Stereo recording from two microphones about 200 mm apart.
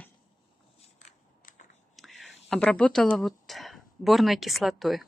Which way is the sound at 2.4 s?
5° left (ahead or behind).